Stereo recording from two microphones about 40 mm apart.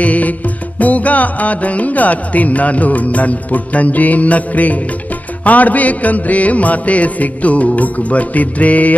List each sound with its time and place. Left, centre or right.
0.0 s music: left